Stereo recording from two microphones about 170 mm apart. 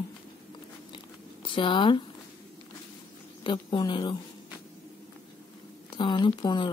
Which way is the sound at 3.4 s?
30° left (ahead or behind).